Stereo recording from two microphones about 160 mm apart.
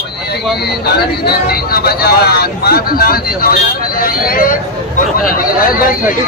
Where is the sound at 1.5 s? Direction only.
75° left (ahead or behind).